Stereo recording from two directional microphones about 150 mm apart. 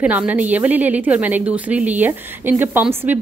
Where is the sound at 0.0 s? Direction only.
10° right (ahead or behind).